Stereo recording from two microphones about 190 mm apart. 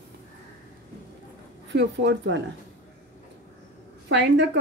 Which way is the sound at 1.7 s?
65° right (ahead or behind).